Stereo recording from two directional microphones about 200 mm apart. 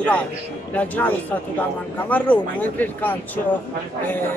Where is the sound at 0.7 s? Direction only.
10° left (ahead or behind).